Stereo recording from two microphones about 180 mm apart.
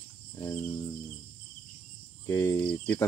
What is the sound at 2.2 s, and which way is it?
Speech, 15° left (ahead or behind).